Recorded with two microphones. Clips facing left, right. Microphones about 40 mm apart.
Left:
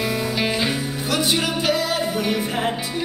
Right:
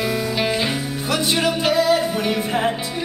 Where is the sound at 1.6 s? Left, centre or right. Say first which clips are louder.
Right 4 dB; right.